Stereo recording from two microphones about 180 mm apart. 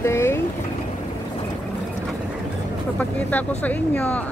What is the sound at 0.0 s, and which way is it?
Boat, 15° left (ahead or behind).